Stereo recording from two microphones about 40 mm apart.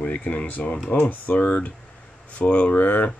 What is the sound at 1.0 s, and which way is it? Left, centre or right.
Speech, left.